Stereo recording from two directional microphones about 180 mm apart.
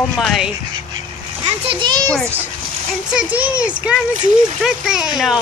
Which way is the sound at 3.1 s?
5° right (ahead or behind).